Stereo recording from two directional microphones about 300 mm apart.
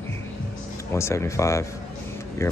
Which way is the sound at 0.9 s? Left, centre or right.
Centre.